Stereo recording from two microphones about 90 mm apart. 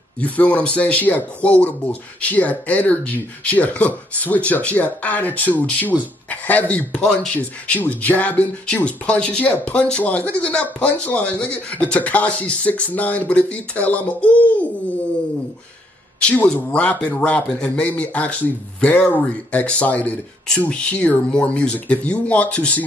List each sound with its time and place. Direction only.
0.2 s speech: 15° left (ahead or behind)
16.2 s speech: 10° left (ahead or behind)